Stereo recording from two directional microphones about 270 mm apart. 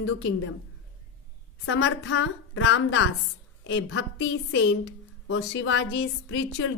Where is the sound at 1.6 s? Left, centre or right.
Left.